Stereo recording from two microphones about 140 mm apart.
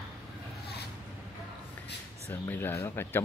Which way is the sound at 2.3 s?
15° left (ahead or behind).